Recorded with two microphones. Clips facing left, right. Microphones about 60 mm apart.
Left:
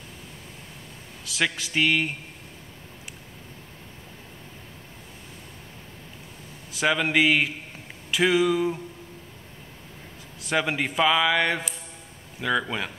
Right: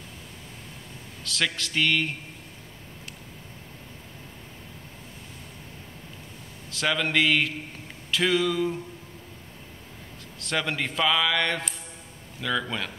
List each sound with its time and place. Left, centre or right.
1.2 s a man's voice: centre
6.7 s a man's voice: centre
10.4 s a man's voice: centre